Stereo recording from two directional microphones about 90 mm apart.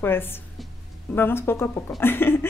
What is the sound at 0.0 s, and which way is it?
Speech, 25° left (ahead or behind).